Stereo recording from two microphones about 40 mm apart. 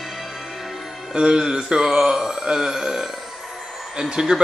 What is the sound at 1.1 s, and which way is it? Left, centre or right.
A man's voice, centre.